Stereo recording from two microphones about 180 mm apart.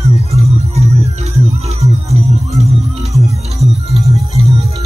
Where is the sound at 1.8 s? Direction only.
35° right (ahead or behind).